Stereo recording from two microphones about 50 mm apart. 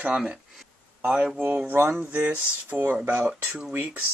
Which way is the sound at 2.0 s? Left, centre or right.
Right.